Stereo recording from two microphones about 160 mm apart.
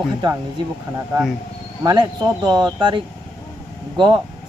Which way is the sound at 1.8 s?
25° right (ahead or behind).